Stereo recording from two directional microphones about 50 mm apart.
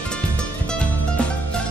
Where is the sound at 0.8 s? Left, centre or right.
Left.